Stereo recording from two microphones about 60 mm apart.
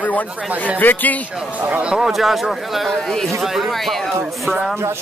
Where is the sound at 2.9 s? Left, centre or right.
Centre.